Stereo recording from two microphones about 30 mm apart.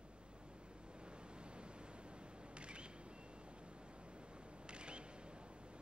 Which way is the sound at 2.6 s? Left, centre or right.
Right.